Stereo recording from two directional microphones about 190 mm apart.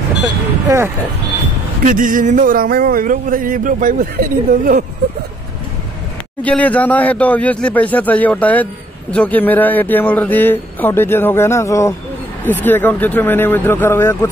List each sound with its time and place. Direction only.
0.7 s speech: 15° right (ahead or behind)
1.9 s speech: 45° right (ahead or behind)
6.4 s speech: 5° left (ahead or behind)